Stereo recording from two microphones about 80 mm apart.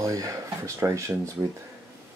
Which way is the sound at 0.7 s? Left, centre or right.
Right.